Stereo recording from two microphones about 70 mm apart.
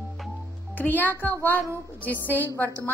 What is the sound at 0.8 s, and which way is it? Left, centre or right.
A woman's voice, left.